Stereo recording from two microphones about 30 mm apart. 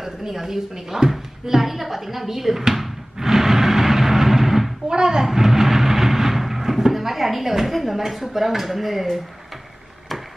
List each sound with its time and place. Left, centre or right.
0.0 s speech: centre
1.4 s a sound: centre
4.8 s a child's voice: right
5.2 s vehicle: centre